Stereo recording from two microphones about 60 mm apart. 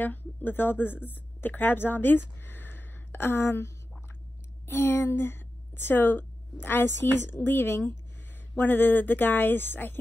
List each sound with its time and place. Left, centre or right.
0.0 s a woman's voice: left